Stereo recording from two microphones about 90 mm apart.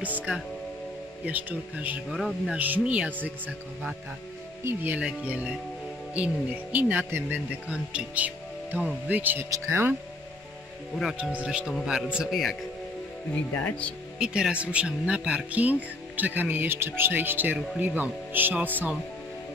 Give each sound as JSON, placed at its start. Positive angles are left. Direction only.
{"t": 0.0, "sound": "speech", "side_deg": -15}
{"t": 2.0, "sound": "speech", "side_deg": 0}
{"t": 2.5, "sound": "speech", "side_deg": -15}
{"t": 4.6, "sound": "speech", "side_deg": -20}
{"t": 7.6, "sound": "speech", "side_deg": -15}
{"t": 11.1, "sound": "speech", "side_deg": -15}
{"t": 13.3, "sound": "speech", "side_deg": 15}
{"t": 14.1, "sound": "speech", "side_deg": -10}